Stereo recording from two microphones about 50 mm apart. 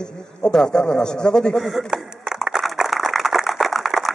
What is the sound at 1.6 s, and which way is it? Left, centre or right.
Speech, centre.